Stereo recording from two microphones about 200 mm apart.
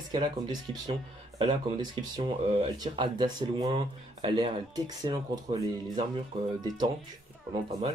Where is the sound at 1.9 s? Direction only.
20° right (ahead or behind).